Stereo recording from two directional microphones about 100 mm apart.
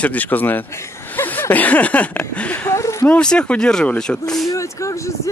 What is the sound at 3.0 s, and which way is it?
Speech, 10° left (ahead or behind).